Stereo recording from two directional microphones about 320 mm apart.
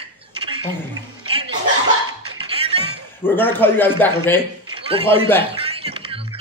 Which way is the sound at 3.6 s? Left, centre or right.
Centre.